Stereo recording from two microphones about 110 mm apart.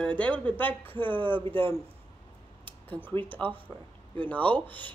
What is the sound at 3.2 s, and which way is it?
A woman's voice, 15° left (ahead or behind).